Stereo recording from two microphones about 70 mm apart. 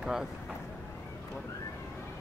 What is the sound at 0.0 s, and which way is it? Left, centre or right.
Speech, centre.